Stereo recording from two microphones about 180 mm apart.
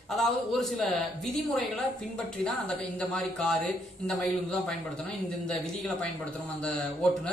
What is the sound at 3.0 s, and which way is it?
Speech, 5° left (ahead or behind).